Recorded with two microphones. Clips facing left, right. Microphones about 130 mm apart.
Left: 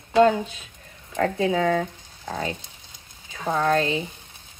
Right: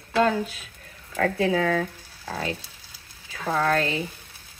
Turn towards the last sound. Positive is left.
turn(degrees=20)  # may be behind; listen again after turning